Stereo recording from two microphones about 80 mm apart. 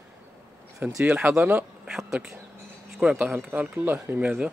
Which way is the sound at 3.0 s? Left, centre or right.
Centre.